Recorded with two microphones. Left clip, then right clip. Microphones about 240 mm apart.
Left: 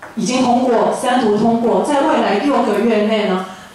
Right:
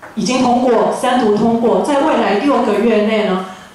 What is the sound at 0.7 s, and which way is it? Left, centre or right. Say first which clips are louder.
A woman's voice: right 1 dB; centre.